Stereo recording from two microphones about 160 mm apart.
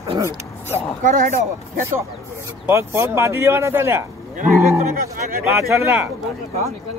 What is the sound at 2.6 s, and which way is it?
Speech, 15° right (ahead or behind).